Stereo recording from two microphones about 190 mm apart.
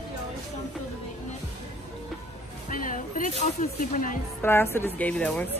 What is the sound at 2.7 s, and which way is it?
Music, 45° left (ahead or behind).